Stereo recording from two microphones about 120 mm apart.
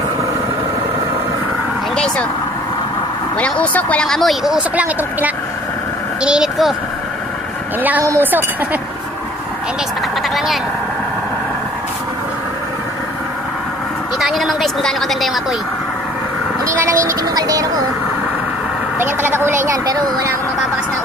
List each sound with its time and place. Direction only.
3.3 s speech: 10° left (ahead or behind); by 6.7 s 5° right (ahead or behind)
8.0 s speech: 20° right (ahead or behind)
10.3 s vehicle: centre (ahead or behind)
14.1 s speech: centre (ahead or behind)
17.0 s speech: 30° right (ahead or behind)
19.0 s a woman's voice: 20° right (ahead or behind)